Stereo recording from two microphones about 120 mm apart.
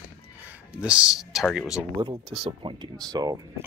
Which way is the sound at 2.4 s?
40° right (ahead or behind).